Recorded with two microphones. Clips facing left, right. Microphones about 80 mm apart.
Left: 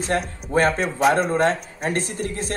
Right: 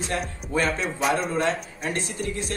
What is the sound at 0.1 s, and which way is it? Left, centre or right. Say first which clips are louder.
A man's voice: left 6 dB; left.